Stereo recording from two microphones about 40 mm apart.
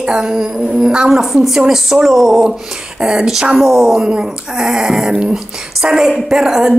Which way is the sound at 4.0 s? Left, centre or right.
Centre.